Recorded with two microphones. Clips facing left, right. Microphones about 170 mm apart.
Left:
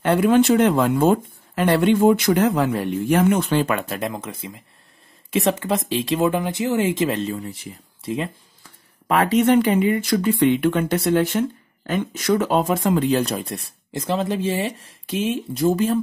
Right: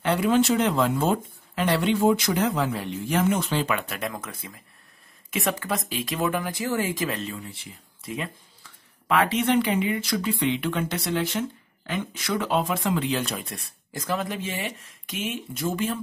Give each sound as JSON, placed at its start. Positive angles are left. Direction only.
{"t": 0.0, "sound": "speech", "side_deg": 55}
{"t": 4.0, "sound": "speech", "side_deg": 25}
{"t": 8.0, "sound": "speech", "side_deg": 30}
{"t": 9.0, "sound": "speech", "side_deg": 40}